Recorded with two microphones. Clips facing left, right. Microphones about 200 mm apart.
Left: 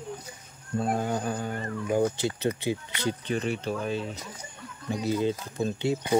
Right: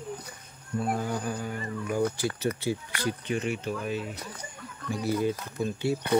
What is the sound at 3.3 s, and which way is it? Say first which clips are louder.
Speech: left 1 dB; 35° left (ahead or behind).